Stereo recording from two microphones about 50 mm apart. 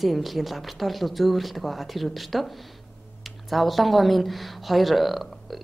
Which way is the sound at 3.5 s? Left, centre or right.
Centre.